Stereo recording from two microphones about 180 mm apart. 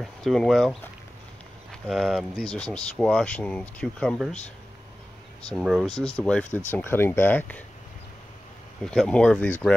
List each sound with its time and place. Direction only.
0.0 s speech: centre (ahead or behind)
5.5 s speech: centre (ahead or behind)
8.8 s speech: 5° left (ahead or behind)